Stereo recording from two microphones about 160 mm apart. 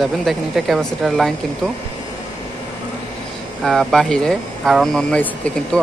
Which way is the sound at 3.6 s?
5° left (ahead or behind).